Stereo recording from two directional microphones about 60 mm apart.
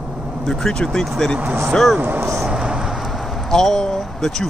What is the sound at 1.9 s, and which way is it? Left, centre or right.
Speech, right.